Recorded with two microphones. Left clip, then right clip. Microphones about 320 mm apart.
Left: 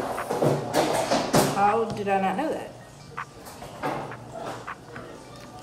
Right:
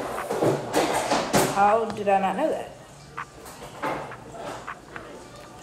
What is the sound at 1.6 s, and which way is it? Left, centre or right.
Speech, centre.